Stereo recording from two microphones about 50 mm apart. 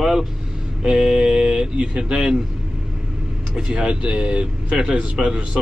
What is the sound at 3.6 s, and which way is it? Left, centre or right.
A man's voice, right.